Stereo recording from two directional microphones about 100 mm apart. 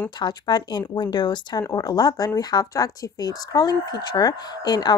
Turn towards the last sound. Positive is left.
turn(degrees=45)  # may be behind; listen again after turning